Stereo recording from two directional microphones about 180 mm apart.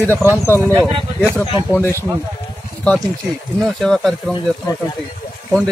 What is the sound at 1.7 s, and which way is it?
Speech, 10° left (ahead or behind).